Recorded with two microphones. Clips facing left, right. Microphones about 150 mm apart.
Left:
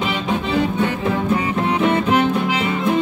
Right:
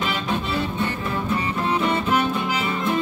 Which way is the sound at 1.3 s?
15° left (ahead or behind).